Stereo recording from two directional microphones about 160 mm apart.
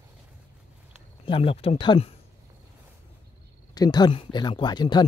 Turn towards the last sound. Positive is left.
turn(degrees=25)  # may be behind; listen again after turning